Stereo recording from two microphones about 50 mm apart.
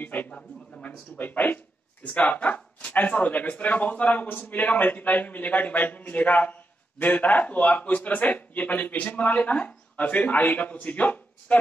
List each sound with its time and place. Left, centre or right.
0.0 s speech: left
0.3 s a sound: centre
0.8 s speech: left